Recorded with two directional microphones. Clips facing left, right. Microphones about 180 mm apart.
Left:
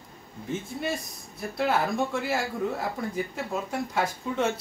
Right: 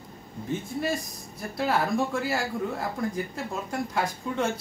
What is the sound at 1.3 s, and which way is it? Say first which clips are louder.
Speech: even; centre (ahead or behind).